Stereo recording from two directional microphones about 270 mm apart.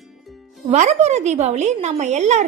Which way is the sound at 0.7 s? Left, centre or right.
Right.